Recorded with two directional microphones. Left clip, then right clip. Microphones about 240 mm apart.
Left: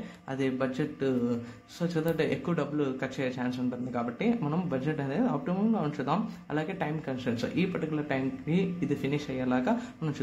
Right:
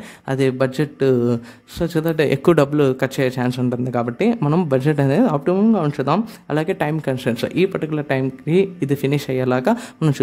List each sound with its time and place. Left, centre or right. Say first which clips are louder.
0.3 s a man's voice: right 12 dB; right